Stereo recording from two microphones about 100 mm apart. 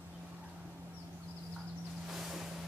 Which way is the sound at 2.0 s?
5° right (ahead or behind).